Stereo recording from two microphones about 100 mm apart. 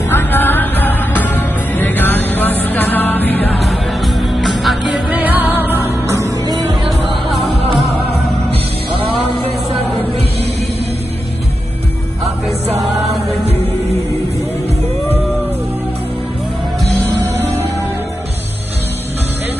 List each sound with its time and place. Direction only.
0.1 s music: 20° left (ahead or behind)
3.5 s music: centre (ahead or behind)
5.1 s music: 15° right (ahead or behind)
6.1 s music: 30° right (ahead or behind)
6.7 s music: 55° right (ahead or behind)
7.2 s music: centre (ahead or behind)
17.1 s music: 20° right (ahead or behind)